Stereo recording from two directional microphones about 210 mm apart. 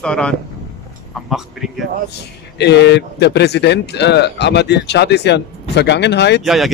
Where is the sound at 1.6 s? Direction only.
Centre (ahead or behind).